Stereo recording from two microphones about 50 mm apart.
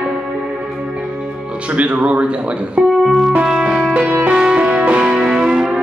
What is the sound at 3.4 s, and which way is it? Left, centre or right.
Music, centre.